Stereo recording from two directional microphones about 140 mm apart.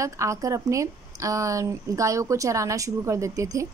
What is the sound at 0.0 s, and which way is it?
A woman's voice, 20° right (ahead or behind).